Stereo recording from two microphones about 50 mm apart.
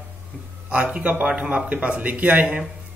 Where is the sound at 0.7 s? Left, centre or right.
Right.